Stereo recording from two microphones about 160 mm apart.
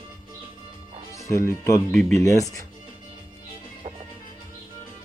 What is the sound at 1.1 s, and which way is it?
Speech, 20° left (ahead or behind).